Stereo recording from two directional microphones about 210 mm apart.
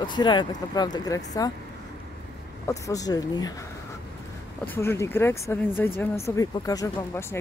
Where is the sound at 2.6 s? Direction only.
15° left (ahead or behind).